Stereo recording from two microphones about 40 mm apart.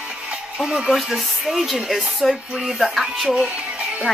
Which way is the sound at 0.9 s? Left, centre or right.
Centre.